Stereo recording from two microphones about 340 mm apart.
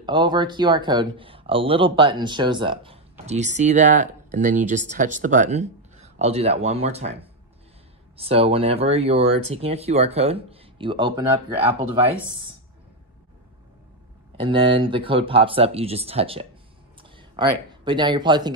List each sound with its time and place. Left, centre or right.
0.0 s speech: centre
14.3 s speech: centre